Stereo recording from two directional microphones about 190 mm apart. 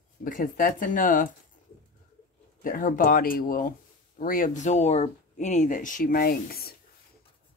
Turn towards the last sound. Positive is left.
turn(degrees=50)  # may be behind; listen again after turning